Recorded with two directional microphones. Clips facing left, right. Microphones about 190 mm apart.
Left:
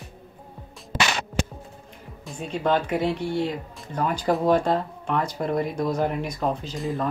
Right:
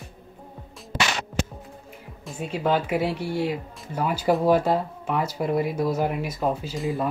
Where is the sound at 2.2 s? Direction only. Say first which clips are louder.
Even; 5° right (ahead or behind).